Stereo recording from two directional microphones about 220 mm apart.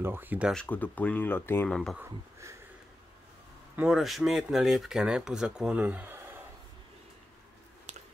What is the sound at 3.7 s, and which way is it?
Speech, 5° right (ahead or behind).